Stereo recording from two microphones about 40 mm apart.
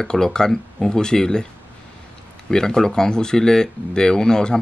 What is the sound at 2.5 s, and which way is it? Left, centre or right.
Speech, centre.